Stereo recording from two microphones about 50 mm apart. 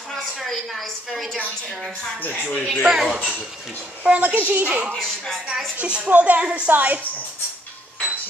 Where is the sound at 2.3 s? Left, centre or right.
Centre.